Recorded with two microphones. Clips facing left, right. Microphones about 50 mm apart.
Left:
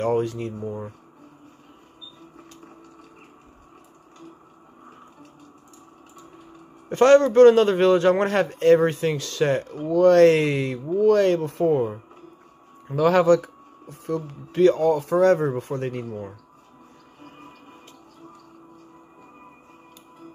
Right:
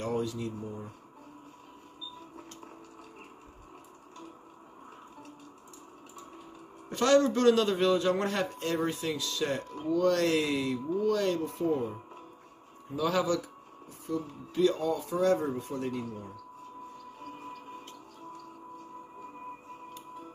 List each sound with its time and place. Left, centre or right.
0.0 s a man's voice: left
6.9 s a man's voice: left
12.8 s speech: left